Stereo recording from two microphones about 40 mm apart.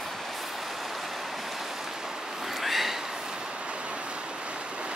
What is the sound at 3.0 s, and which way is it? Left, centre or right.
Vehicle, centre.